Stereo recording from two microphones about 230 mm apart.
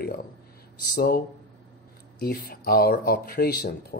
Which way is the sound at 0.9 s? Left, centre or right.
Left.